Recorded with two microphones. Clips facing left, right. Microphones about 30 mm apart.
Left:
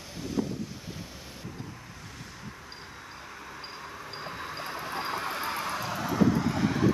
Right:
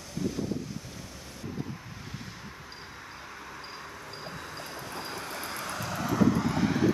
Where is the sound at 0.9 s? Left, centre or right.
Centre.